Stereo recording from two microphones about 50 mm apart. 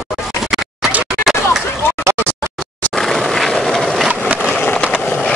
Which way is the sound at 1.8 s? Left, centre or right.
Left.